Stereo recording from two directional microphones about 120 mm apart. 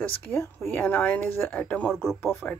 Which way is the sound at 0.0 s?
15° left (ahead or behind).